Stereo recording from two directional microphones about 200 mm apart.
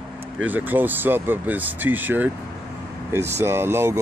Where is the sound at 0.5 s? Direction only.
10° right (ahead or behind).